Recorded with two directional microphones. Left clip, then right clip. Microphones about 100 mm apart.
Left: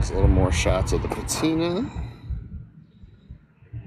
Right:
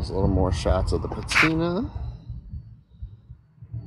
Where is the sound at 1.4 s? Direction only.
40° left (ahead or behind).